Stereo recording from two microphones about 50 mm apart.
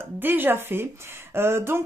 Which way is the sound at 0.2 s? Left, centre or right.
Right.